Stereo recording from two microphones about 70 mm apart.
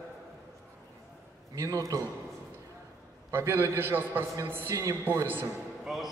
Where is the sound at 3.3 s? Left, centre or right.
Right.